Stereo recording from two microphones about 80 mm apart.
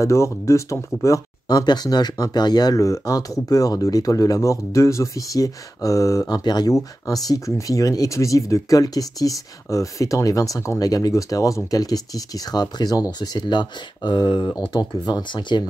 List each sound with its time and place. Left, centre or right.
0.0 s speech: left
1.5 s speech: left
6.2 s speech: left